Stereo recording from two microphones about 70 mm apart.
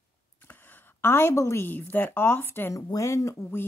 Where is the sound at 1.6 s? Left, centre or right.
Left.